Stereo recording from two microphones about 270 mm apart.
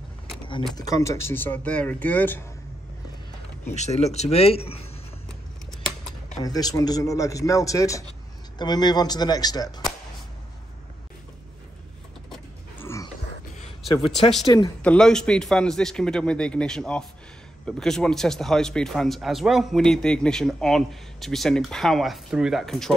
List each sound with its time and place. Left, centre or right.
0.7 s speech: centre
3.6 s speech: left
6.4 s speech: centre
12.3 s a sound: centre
13.9 s speech: centre